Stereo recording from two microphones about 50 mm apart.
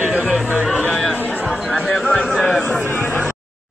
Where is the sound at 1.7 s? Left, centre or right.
Centre.